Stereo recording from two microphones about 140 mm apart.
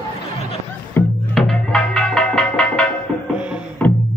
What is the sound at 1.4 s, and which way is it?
Music, 5° left (ahead or behind).